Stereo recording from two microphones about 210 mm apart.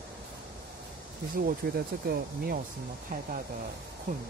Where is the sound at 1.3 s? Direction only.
45° right (ahead or behind).